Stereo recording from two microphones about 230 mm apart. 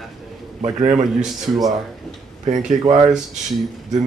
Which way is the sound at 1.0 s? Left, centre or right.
Centre.